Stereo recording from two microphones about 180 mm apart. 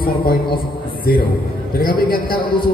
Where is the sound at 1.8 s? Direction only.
55° left (ahead or behind).